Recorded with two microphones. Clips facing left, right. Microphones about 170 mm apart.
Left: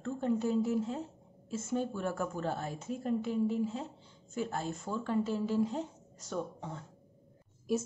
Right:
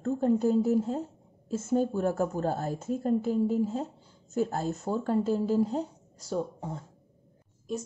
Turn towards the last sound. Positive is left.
turn(degrees=5)  # may be behind; listen again after turning